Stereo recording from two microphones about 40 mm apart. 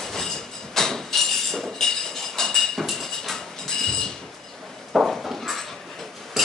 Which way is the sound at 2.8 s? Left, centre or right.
Centre.